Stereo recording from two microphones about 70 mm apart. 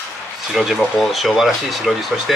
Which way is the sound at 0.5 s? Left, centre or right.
Centre.